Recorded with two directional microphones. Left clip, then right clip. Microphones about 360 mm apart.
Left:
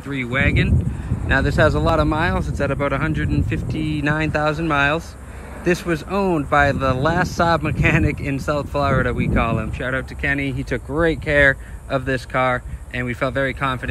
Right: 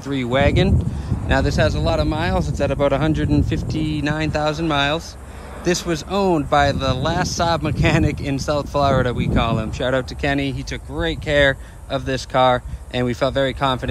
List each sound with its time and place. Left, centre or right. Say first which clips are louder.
0.1 s speech: right 2 dB; centre